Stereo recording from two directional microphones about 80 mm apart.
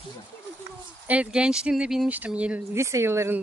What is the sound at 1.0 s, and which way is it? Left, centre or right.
Speech, centre.